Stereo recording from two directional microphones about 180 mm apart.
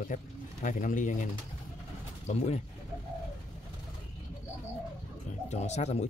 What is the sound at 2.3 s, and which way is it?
Speech, 35° left (ahead or behind).